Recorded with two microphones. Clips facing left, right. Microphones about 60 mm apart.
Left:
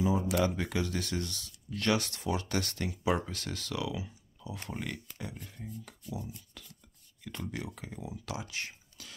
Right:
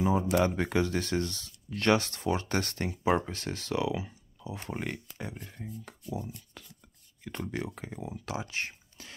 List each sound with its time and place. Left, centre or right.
0.0 s speech: right